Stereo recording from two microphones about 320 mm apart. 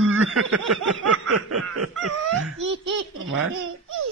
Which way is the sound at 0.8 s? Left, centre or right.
Right.